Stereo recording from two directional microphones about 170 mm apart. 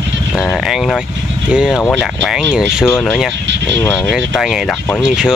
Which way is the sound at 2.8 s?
10° left (ahead or behind).